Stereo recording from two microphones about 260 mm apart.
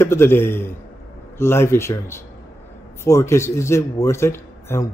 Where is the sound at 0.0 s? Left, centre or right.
Centre.